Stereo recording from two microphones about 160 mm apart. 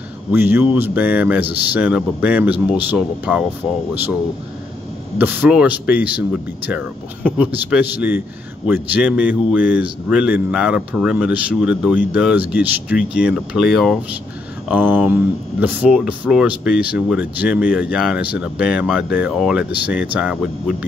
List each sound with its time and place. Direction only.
0.3 s speech: 15° right (ahead or behind)
5.2 s speech: 10° right (ahead or behind)
14.7 s speech: 10° right (ahead or behind)